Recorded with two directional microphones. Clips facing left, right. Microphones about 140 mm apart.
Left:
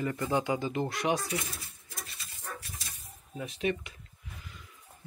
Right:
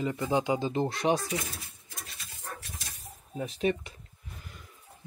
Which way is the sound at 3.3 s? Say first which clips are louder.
Right 3 dB; 35° right (ahead or behind).